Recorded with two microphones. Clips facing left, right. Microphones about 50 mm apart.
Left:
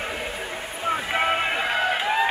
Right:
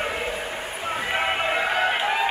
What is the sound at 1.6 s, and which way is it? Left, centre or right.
Music, centre.